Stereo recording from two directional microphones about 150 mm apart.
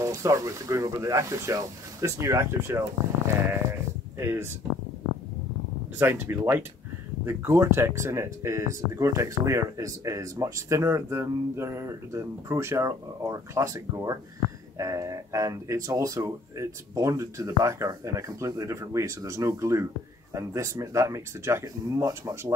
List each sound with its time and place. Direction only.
0.0 s speech: 20° right (ahead or behind)
4.2 s speech: 15° right (ahead or behind)
5.9 s speech: 15° right (ahead or behind)